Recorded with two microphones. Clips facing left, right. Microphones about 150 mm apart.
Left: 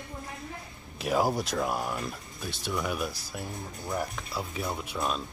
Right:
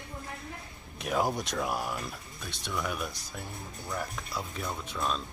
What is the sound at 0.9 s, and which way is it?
Speech, 5° left (ahead or behind).